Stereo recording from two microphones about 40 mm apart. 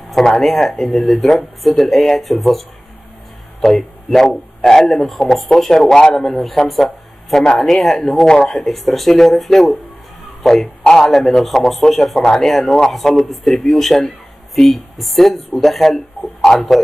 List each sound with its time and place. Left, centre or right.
0.1 s speech: centre
3.6 s speech: centre
10.6 s a man's voice: centre
11.1 s speech: centre